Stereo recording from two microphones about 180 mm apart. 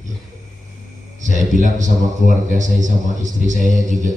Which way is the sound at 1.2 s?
45° right (ahead or behind).